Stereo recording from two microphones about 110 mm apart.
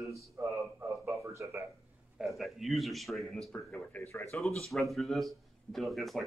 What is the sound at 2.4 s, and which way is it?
Speech, centre (ahead or behind).